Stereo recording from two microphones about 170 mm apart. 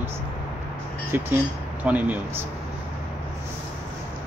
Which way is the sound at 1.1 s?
10° right (ahead or behind).